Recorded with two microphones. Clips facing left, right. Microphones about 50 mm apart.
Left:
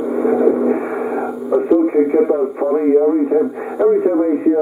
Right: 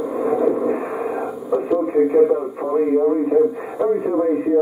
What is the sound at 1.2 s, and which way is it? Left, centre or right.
Radio, centre.